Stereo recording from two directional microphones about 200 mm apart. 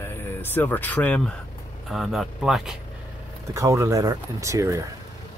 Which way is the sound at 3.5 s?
15° right (ahead or behind).